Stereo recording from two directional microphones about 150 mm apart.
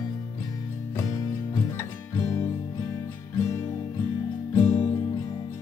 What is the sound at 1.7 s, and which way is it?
Music, 15° left (ahead or behind).